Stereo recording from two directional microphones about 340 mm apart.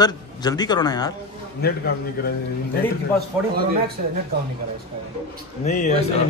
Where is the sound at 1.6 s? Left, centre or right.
Left.